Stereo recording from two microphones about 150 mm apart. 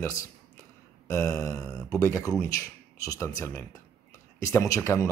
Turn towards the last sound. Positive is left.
turn(degrees=20)  # may be behind; listen again after turning